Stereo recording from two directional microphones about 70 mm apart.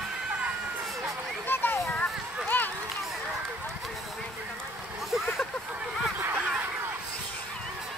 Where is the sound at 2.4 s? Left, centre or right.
Left.